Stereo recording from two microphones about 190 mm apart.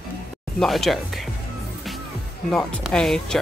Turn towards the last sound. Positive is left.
turn(degrees=5)  # may be behind; listen again after turning